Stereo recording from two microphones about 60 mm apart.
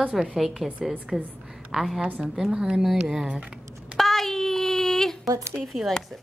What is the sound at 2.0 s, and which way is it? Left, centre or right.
Speech, right.